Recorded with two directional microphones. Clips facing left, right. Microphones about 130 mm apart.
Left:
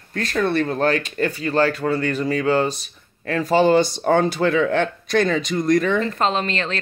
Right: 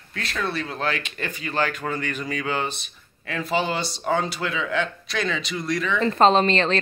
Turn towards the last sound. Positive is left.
turn(degrees=-30)  # may be behind; listen again after turning